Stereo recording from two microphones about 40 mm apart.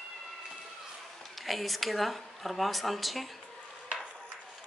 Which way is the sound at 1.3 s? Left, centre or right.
Centre.